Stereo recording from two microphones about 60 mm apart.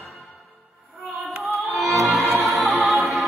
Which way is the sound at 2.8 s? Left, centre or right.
Centre.